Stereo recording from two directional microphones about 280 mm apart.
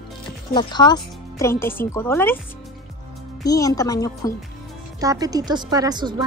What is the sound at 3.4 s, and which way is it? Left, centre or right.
Speech, centre.